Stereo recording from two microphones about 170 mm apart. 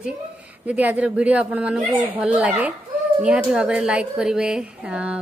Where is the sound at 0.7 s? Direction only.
10° right (ahead or behind).